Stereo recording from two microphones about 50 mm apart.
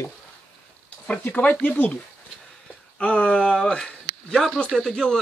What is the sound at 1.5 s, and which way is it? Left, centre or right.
Speech, left.